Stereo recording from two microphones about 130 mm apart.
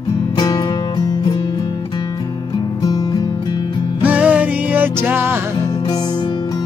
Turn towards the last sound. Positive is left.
turn(degrees=-15)  # may be behind; listen again after turning